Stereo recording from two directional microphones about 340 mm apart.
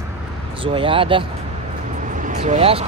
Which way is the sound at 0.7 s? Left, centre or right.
Centre.